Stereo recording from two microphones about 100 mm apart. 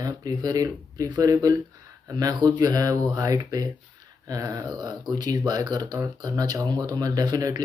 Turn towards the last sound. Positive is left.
turn(degrees=-40)  # may be behind; listen again after turning